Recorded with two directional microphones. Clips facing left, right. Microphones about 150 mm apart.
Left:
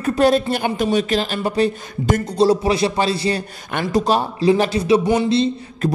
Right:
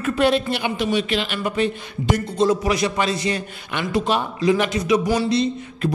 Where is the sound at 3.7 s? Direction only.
45° left (ahead or behind); by 5.5 s 30° left (ahead or behind).